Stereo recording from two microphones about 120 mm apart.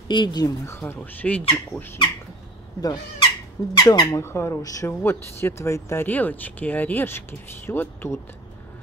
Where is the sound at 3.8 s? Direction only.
30° left (ahead or behind).